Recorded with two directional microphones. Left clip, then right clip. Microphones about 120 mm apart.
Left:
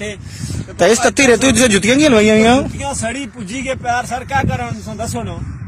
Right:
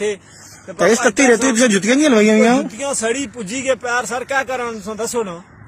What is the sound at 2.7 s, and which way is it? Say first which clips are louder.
Speech: right 2 dB; 85° right.